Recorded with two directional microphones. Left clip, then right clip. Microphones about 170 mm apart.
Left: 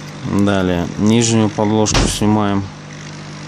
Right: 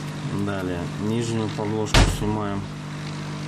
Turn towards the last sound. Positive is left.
turn(degrees=60)  # may be behind; listen again after turning